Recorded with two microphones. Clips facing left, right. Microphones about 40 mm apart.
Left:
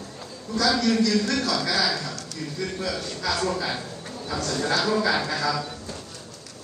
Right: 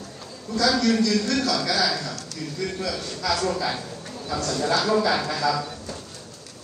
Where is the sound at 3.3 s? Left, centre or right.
Left.